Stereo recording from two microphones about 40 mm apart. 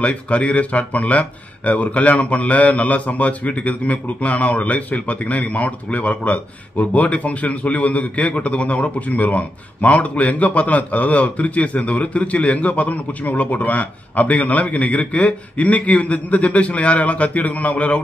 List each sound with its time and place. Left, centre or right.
0.0 s speech: left